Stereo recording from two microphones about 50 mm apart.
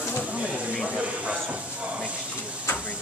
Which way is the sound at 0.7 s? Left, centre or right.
Centre.